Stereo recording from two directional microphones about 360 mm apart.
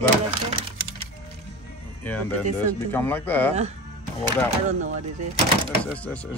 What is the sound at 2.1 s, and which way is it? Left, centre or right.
Speech, centre.